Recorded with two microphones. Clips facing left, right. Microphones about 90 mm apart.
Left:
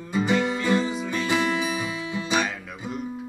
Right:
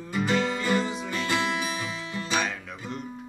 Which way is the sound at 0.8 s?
Centre (ahead or behind).